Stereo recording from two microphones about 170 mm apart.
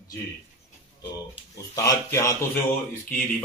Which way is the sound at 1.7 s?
20° left (ahead or behind).